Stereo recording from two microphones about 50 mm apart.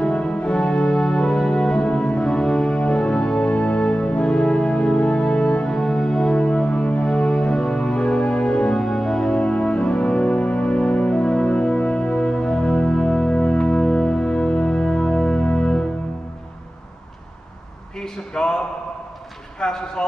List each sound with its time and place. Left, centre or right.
0.0 s music: centre
17.9 s a sound: centre
19.6 s basketball bounce: centre